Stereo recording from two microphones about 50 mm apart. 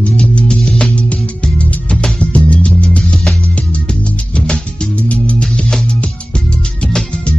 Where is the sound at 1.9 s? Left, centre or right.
Left.